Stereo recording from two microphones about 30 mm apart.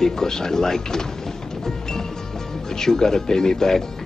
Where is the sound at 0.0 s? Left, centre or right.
Centre.